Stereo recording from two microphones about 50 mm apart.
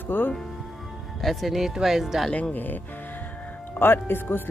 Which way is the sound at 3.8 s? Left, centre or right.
Left.